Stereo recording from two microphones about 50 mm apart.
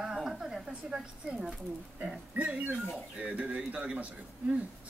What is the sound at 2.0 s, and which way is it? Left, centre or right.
A woman's voice, right.